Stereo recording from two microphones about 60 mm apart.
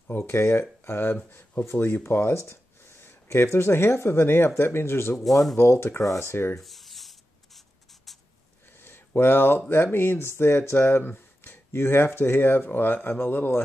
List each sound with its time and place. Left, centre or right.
0.3 s speech: left
2.0 s a sound: left
3.5 s speech: left
5.2 s speech: centre
5.6 s speech: left
6.6 s writing: centre
8.7 s a sound: left
9.7 s speech: left